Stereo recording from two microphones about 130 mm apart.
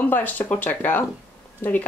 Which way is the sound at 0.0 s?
15° left (ahead or behind).